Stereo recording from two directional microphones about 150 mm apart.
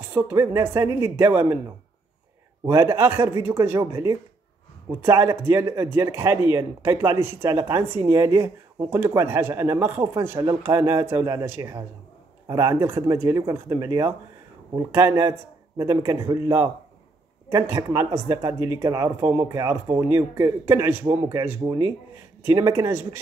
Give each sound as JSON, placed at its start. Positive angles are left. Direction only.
{"t": 0.1, "sound": "speech", "side_deg": -15}
{"t": 2.6, "sound": "speech", "side_deg": -15}